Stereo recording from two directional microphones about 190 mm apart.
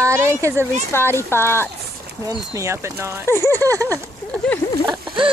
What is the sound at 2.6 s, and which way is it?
Speech, 15° right (ahead or behind).